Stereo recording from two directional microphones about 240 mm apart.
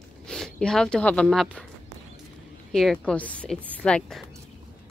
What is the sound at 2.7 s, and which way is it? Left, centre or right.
A woman's voice, centre.